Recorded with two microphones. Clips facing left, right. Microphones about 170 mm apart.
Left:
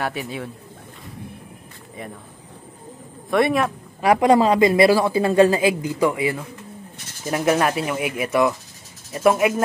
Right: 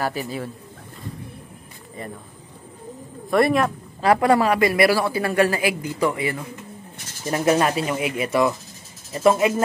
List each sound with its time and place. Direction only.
0.0 s speech: centre (ahead or behind)
3.3 s speech: centre (ahead or behind)
4.0 s a man's voice: 15° left (ahead or behind)